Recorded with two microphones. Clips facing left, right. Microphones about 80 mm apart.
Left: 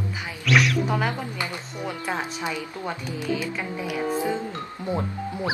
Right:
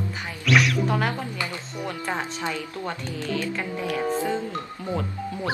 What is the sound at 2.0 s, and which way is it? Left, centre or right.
Speech, centre.